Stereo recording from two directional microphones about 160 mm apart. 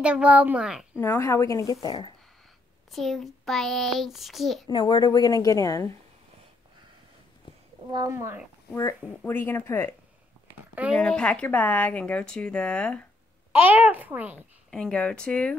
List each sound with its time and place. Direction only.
0.0 s a child's voice: 5° right (ahead or behind)
0.9 s a woman's voice: 15° left (ahead or behind)
2.9 s a child's voice: centre (ahead or behind)
4.6 s a woman's voice: 25° left (ahead or behind)
7.4 s a sound: 30° left (ahead or behind)
7.9 s speech: 20° right (ahead or behind)
8.7 s speech: 15° left (ahead or behind)
10.7 s speech: 10° right (ahead or behind)
11.0 s speech: 5° left (ahead or behind)
13.5 s a child's voice: 10° right (ahead or behind)
14.7 s speech: 5° left (ahead or behind)